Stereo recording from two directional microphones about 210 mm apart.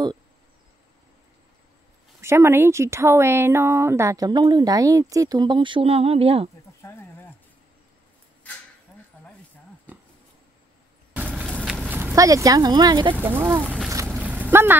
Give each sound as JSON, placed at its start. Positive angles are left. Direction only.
{"t": 2.2, "sound": "speech", "side_deg": -10}
{"t": 6.8, "sound": "a sound", "side_deg": 15}
{"t": 11.1, "sound": "vehicle", "side_deg": -5}
{"t": 11.4, "sound": "vehicle", "side_deg": 5}
{"t": 11.7, "sound": "speech", "side_deg": -5}
{"t": 13.8, "sound": "a sound", "side_deg": -10}